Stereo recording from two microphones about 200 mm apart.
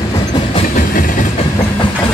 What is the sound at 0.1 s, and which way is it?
Train, 20° left (ahead or behind).